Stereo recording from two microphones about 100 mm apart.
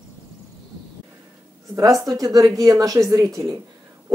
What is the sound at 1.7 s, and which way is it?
A woman's voice, 35° right (ahead or behind).